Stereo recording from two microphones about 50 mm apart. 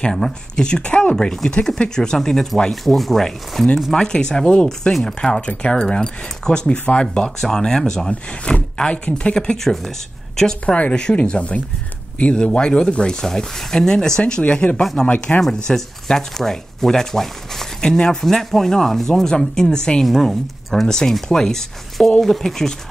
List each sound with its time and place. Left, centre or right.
0.6 s speech: centre
14.4 s speech: left
15.6 s speech: centre
18.2 s speech: centre
20.1 s speech: centre